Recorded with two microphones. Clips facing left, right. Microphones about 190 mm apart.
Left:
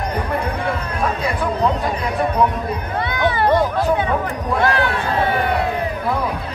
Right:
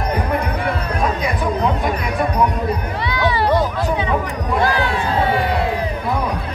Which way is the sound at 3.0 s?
50° left (ahead or behind).